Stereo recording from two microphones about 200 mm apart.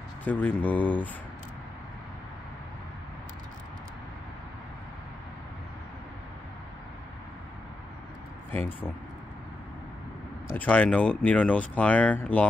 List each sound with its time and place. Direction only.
0.2 s speech: 5° left (ahead or behind)
10.5 s speech: 5° left (ahead or behind)